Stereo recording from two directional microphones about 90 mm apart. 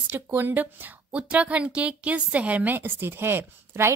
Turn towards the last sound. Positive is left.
turn(degrees=-25)  # may be behind; listen again after turning